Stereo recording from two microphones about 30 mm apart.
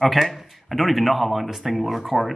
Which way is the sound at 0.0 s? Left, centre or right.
Centre.